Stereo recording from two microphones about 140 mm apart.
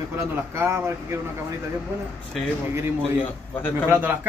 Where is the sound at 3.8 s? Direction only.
15° right (ahead or behind).